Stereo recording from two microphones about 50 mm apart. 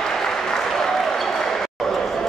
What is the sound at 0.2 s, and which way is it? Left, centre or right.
Applause, centre.